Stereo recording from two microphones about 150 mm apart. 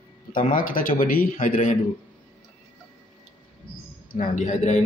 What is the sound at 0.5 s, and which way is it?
Speech, 70° left (ahead or behind).